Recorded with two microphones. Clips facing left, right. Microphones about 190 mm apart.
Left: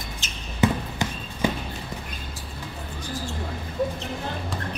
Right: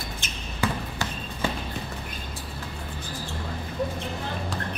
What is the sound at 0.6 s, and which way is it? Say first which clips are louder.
Basketball bounce: left 5 dB; 20° left (ahead or behind).